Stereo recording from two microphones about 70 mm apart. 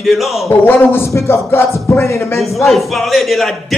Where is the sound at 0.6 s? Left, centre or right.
Left.